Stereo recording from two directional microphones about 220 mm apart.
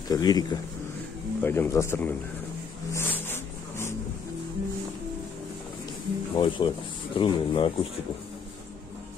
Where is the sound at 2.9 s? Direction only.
10° left (ahead or behind).